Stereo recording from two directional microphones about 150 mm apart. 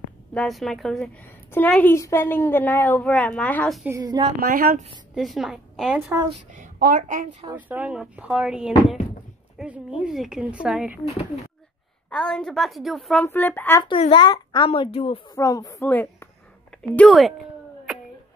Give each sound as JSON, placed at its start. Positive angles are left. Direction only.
{"t": 0.3, "sound": "a woman's voice", "side_deg": 5}
{"t": 4.0, "sound": "a woman's voice", "side_deg": -25}
{"t": 4.4, "sound": "speech", "side_deg": -90}
{"t": 5.1, "sound": "a woman's voice", "side_deg": 0}
{"t": 6.0, "sound": "a woman's voice", "side_deg": -25}
{"t": 6.5, "sound": "speech", "side_deg": -70}
{"t": 7.5, "sound": "speech", "side_deg": -10}
{"t": 12.1, "sound": "speech", "side_deg": 5}
{"t": 13.2, "sound": "a woman's voice", "side_deg": 15}
{"t": 13.8, "sound": "speech", "side_deg": 35}
{"t": 15.3, "sound": "a woman's voice", "side_deg": 20}